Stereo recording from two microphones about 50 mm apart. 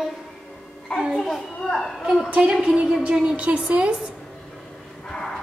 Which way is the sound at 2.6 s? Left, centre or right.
Centre.